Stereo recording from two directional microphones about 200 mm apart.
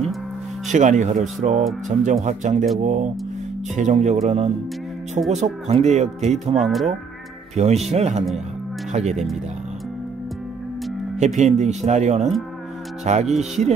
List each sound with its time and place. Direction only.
0.7 s speech: 35° right (ahead or behind)
6.6 s speech: centre (ahead or behind)
7.5 s speech: 35° right (ahead or behind)
11.1 s speech: 35° right (ahead or behind)
13.0 s music: 35° right (ahead or behind)
13.4 s speech: 35° right (ahead or behind)